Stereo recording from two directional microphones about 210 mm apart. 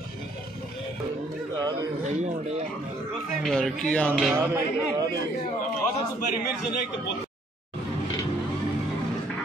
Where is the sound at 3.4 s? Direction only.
Centre (ahead or behind).